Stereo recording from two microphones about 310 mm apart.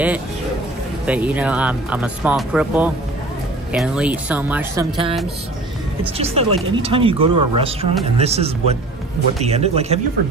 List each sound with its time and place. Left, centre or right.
1.0 s speech: centre
6.1 s speech: centre